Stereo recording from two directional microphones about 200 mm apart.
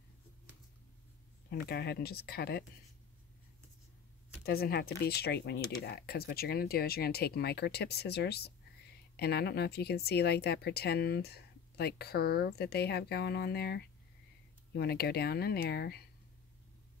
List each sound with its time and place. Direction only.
1.5 s speech: 55° left (ahead or behind)
4.5 s speech: 50° left (ahead or behind)